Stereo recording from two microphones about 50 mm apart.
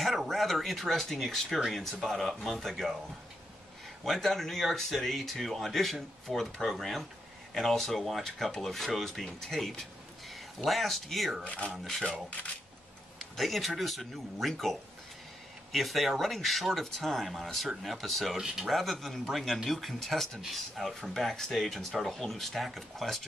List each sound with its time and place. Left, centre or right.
0.3 s speech: centre
4.0 s speech: centre
11.4 s speech: left
11.7 s speech: centre
12.0 s speech: left
13.2 s speech: centre